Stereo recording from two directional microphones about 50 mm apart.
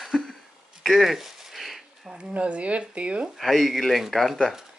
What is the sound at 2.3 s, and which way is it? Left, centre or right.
Speech, right.